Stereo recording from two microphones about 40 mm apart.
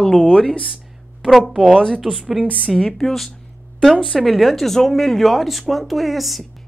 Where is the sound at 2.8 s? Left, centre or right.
Centre.